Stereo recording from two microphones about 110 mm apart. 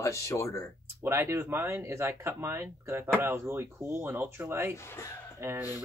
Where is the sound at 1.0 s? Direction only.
20° right (ahead or behind).